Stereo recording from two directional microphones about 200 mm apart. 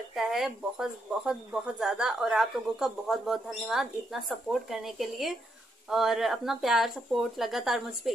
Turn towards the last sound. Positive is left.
turn(degrees=0)  # may be behind; listen again after turning